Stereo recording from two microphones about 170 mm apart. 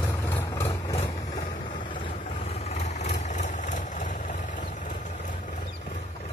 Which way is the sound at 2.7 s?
40° left (ahead or behind).